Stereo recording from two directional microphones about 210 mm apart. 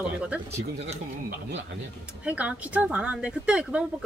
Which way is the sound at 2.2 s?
5° right (ahead or behind).